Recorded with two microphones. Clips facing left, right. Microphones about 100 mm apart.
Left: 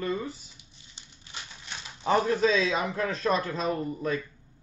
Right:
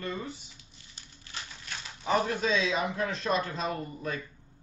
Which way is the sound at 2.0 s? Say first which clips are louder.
Left 4 dB; 40° left (ahead or behind).